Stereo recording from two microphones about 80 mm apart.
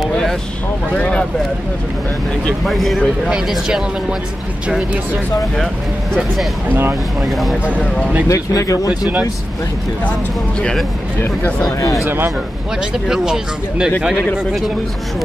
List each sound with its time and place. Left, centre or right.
0.1 s vehicle: centre
0.9 s speech: centre
2.4 s speech: centre
3.3 s speech: centre
6.7 s speech: right
7.2 s speech: centre
8.3 s speech: left
10.6 s speech: centre
11.8 s speech: left
12.9 s speech: centre